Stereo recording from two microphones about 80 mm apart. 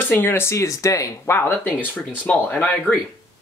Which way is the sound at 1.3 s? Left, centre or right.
Left.